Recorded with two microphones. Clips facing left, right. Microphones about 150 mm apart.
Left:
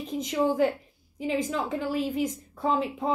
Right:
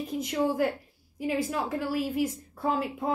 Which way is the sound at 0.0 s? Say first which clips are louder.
Left 1 dB; 10° right (ahead or behind).